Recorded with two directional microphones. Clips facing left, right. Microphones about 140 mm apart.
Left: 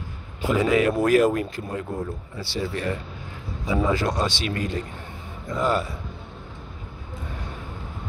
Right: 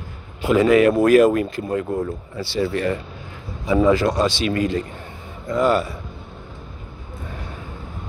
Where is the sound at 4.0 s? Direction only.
90° right.